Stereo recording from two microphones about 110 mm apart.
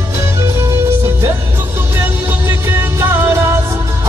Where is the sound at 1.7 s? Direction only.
15° right (ahead or behind).